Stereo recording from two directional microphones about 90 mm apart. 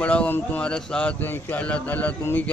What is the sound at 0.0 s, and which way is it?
Speech, 15° left (ahead or behind).